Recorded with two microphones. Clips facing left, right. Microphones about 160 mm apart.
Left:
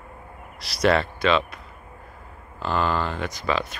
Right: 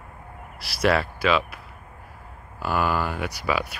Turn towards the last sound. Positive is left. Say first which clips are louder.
# even
turn(degrees=-10)  # may be behind; listen again after turning